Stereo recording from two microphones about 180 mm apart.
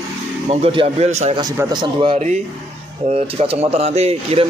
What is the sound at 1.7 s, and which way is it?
A man's voice, 25° right (ahead or behind).